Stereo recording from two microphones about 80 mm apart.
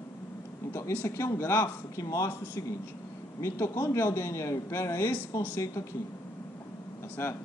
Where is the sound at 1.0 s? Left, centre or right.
Left.